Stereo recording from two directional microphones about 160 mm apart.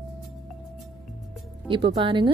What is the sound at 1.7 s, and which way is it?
Speech, 30° right (ahead or behind).